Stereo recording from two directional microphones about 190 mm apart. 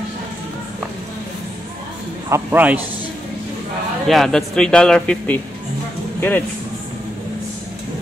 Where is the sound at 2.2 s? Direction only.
10° right (ahead or behind).